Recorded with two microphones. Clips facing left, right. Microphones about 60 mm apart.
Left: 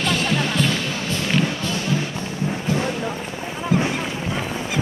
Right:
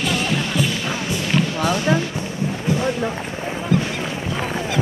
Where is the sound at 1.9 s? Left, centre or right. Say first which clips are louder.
Right 4 dB; right.